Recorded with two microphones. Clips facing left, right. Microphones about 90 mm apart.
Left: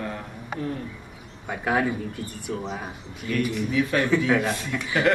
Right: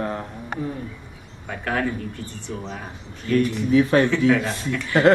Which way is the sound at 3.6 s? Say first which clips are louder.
Right 7 dB; 35° right (ahead or behind).